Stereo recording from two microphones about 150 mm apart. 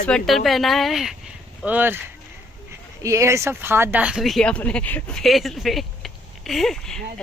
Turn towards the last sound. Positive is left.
turn(degrees=0)  # may be behind; listen again after turning